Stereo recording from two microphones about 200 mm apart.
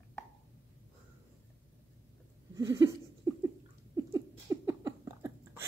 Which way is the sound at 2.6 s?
15° right (ahead or behind).